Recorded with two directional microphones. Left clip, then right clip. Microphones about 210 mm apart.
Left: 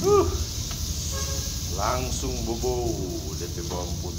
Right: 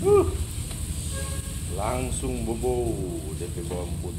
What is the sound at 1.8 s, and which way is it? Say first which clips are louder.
Speech: left 2 dB; 20° right (ahead or behind).